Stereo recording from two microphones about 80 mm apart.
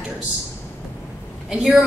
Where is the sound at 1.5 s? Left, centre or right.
Centre.